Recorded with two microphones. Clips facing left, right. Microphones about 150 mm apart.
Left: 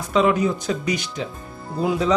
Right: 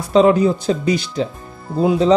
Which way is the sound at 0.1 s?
30° right (ahead or behind).